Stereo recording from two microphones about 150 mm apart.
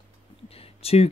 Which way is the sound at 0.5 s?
45° left (ahead or behind).